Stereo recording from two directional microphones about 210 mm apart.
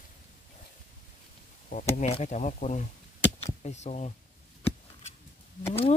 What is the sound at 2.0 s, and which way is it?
Speech, 30° left (ahead or behind).